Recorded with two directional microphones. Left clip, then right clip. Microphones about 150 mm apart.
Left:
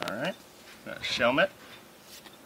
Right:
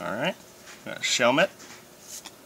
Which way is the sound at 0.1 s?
15° right (ahead or behind).